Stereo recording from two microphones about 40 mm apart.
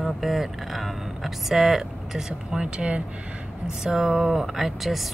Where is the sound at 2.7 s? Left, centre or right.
Right.